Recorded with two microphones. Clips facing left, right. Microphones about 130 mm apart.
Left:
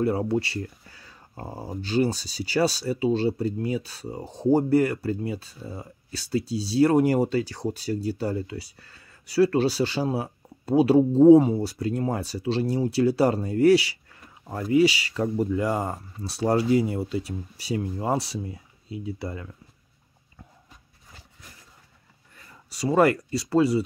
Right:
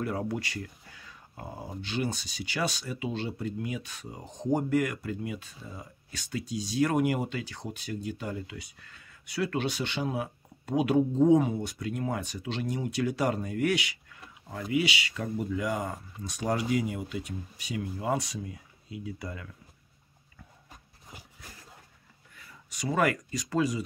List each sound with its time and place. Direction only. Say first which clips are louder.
0.0 s speech: left 8 dB; 30° left (ahead or behind)
22.7 s speech: left 7 dB; 35° left (ahead or behind)